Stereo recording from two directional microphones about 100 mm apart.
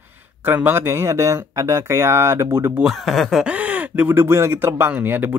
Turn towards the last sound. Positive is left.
turn(degrees=-20)  # may be behind; listen again after turning